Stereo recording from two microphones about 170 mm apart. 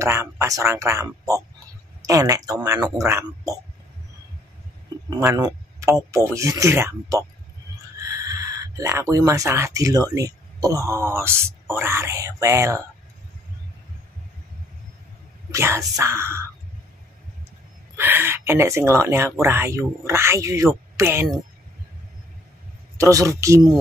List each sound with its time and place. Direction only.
0.0 s speech: 15° right (ahead or behind)
5.2 s speech: 20° right (ahead or behind)
15.5 s speech: 15° right (ahead or behind)
17.9 s speech: 10° right (ahead or behind)
22.9 s speech: 20° right (ahead or behind)